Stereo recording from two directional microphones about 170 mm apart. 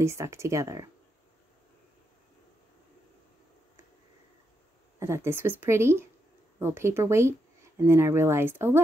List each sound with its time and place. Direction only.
0.0 s a woman's voice: 15° right (ahead or behind)
4.9 s a woman's voice: 15° right (ahead or behind)